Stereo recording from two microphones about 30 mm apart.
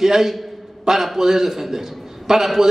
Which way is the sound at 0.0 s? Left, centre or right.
Centre.